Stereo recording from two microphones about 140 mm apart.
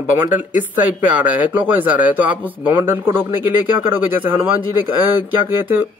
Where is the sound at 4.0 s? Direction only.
15° right (ahead or behind).